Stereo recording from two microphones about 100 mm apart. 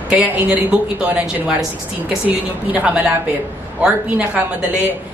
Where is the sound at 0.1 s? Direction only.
15° right (ahead or behind).